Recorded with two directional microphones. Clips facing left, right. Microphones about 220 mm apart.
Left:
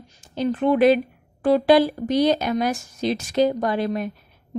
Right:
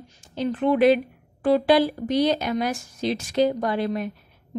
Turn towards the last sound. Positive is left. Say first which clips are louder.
# left 2 dB
turn(degrees=45)  # may be behind; listen again after turning